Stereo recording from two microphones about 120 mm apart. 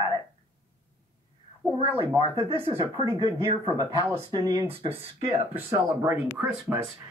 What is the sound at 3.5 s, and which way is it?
Speech, 40° right (ahead or behind).